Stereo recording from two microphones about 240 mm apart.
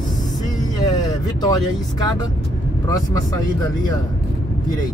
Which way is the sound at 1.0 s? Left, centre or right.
Centre.